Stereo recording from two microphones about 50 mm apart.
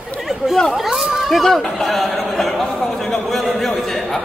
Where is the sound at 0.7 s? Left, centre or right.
Centre.